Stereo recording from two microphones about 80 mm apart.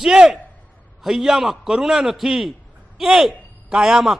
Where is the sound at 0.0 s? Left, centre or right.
Centre.